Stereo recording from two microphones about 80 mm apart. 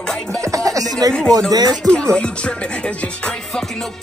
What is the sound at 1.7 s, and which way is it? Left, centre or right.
Music, centre.